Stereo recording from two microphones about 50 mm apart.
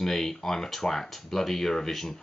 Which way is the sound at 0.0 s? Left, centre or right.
Centre.